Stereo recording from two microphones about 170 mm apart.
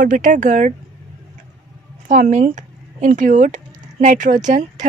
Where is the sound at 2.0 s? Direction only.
50° right (ahead or behind).